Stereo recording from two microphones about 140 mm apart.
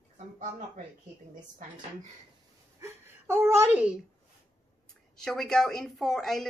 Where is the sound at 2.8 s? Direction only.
20° right (ahead or behind).